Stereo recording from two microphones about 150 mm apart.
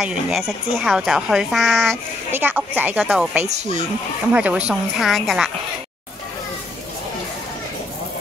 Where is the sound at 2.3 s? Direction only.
10° right (ahead or behind).